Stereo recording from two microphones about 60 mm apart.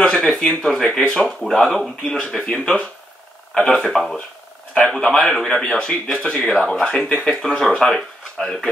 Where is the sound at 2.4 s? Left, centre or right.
Centre.